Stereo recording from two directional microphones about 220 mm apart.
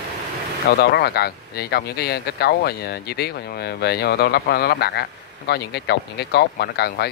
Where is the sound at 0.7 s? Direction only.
45° left (ahead or behind).